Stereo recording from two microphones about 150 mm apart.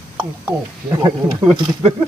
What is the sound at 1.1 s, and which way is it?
Snake, 30° right (ahead or behind).